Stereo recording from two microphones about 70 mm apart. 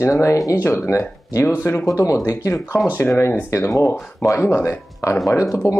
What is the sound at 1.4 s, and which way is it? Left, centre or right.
Speech, left.